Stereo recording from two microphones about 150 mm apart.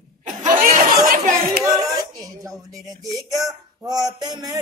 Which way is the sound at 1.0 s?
65° right (ahead or behind).